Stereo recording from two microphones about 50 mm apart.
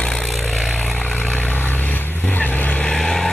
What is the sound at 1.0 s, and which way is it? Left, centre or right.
Vehicle, left.